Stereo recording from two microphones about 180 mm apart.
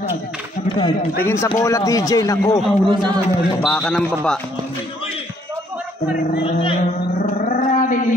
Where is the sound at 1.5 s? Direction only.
15° left (ahead or behind).